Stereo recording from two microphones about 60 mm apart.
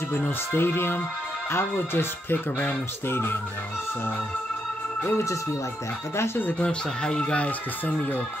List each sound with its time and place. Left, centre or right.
0.2 s speech: left
5.1 s speech: left
6.1 s speech: left
6.6 s speech: centre